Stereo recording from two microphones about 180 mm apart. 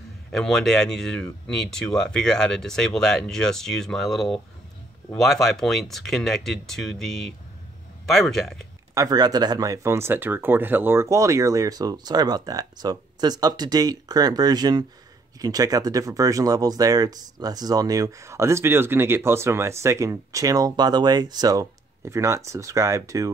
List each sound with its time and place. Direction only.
0.3 s speech: centre (ahead or behind)
8.9 s speech: 20° right (ahead or behind)